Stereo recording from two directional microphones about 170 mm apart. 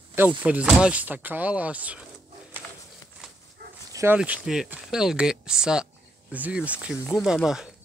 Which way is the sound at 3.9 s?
15° right (ahead or behind).